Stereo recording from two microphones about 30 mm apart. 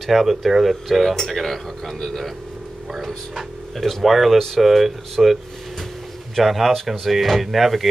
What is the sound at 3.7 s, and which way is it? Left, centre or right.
Speech, centre.